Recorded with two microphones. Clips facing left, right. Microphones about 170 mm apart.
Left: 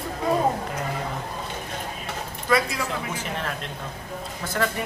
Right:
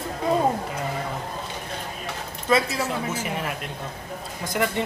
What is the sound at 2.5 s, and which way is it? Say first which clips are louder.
Speech: right 1 dB; 25° right (ahead or behind).